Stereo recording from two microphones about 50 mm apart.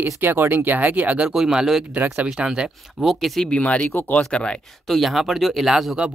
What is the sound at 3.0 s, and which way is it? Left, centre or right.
Speech, centre.